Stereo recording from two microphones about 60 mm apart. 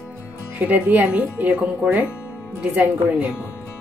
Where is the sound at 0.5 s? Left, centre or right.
Right.